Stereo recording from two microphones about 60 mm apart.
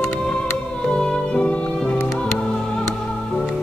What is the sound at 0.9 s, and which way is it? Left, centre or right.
Music, centre.